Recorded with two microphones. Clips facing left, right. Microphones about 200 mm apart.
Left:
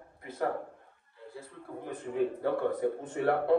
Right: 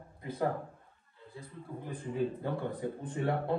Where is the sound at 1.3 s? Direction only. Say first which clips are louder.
Left 1 dB; 60° left (ahead or behind).